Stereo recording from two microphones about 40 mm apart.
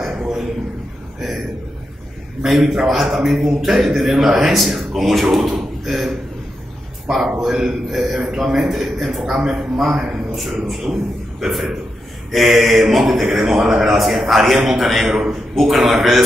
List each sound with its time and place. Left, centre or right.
2.4 s a man's voice: centre
10.3 s a man's voice: centre